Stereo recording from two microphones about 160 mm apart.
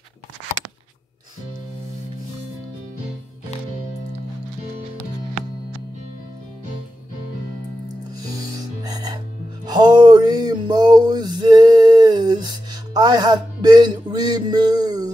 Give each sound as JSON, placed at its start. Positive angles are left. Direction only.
{"t": 8.3, "sound": "music", "side_deg": -20}
{"t": 9.7, "sound": "a sound", "side_deg": -25}
{"t": 12.9, "sound": "music", "side_deg": -25}